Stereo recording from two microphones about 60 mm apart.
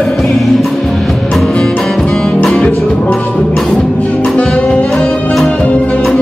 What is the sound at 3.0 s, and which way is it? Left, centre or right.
Music, left.